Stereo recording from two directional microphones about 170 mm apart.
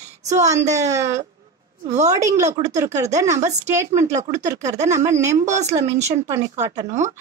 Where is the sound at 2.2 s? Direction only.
20° right (ahead or behind).